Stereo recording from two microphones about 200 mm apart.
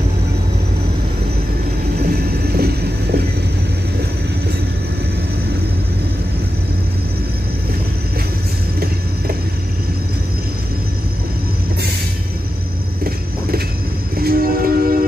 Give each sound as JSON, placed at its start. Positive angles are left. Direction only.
{"t": 2.0, "sound": "train", "side_deg": -50}
{"t": 14.1, "sound": "music", "side_deg": -50}